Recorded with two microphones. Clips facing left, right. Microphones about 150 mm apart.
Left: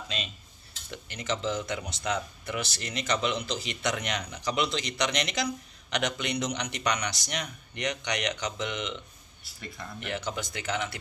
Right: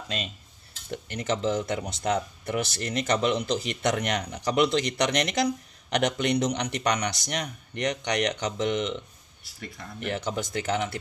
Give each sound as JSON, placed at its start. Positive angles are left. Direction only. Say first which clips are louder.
{"t": 0.8, "sound": "speech", "louder": "right 4 dB", "side_deg": -50}
{"t": 9.9, "sound": "speech", "louder": "right 4 dB", "side_deg": -45}